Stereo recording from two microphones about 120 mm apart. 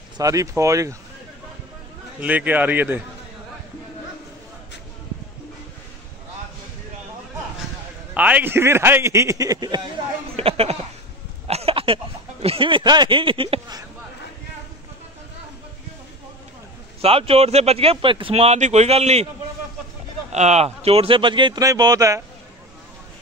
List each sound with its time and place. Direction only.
0.2 s a man's voice: 30° right (ahead or behind)
2.2 s a man's voice: 15° right (ahead or behind)
8.1 s a man's voice: 10° right (ahead or behind); by 10.0 s 35° right (ahead or behind)
10.3 s a sound: 55° right (ahead or behind)
11.4 s speech: 55° right (ahead or behind)
17.0 s speech: 55° right (ahead or behind)
20.3 s speech: 65° right (ahead or behind); by 21.5 s 40° right (ahead or behind)
21.5 s a man's voice: 30° right (ahead or behind)